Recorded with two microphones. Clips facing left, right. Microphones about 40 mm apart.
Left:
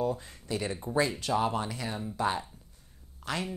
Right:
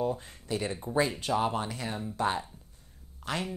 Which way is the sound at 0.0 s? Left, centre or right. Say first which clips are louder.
Even; right.